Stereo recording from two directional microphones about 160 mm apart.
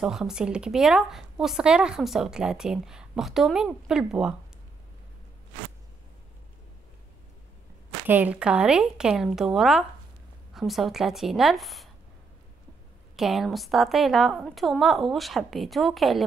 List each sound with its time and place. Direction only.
0.0 s speech: 5° right (ahead or behind)
8.1 s speech: 10° right (ahead or behind)
13.1 s speech: centre (ahead or behind)